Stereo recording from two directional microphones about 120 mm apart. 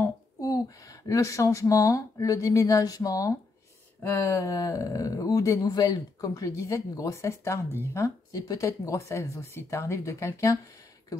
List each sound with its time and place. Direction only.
0.4 s speech: 30° left (ahead or behind)